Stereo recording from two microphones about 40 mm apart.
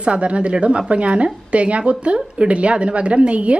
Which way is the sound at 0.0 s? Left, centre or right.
Right.